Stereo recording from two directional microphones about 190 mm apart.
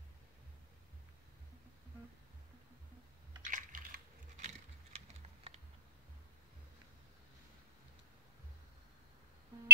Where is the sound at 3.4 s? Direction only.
45° right (ahead or behind).